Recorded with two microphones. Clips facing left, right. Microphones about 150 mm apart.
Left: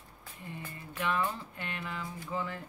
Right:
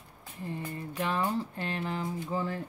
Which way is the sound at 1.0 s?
35° right (ahead or behind).